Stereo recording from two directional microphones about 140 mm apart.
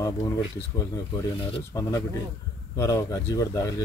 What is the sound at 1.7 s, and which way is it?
Speech, 20° left (ahead or behind).